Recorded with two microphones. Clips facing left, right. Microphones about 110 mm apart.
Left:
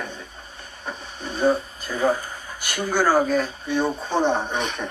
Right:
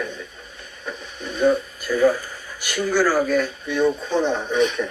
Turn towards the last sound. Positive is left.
turn(degrees=35)  # may be behind; listen again after turning